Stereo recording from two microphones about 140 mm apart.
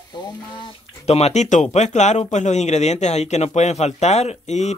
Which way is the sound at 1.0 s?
50° left (ahead or behind).